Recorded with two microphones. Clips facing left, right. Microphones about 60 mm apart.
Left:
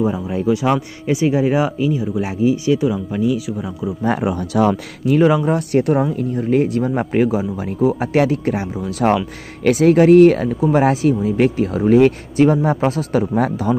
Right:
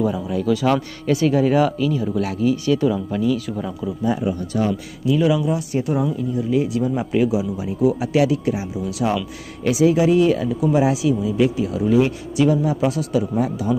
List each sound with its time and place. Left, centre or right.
0.0 s speech: left; by 3.7 s centre
4.0 s speech: left
5.0 s speech: left